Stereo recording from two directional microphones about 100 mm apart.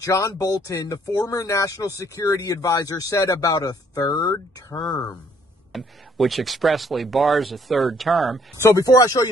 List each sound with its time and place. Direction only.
0.0 s speech: 30° left (ahead or behind)
5.7 s speech: centre (ahead or behind)
8.6 s speech: 35° left (ahead or behind)